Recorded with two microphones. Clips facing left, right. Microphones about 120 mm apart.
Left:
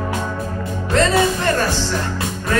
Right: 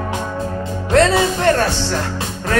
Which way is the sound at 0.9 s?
75° right (ahead or behind).